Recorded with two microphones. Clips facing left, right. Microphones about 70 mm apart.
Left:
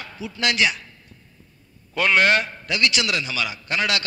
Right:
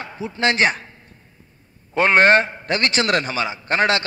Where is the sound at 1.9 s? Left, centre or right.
Right.